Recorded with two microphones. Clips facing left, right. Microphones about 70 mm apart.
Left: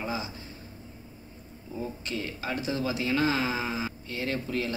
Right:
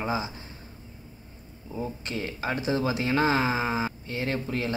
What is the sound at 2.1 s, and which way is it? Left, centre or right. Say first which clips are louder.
Speech: right 3 dB; right.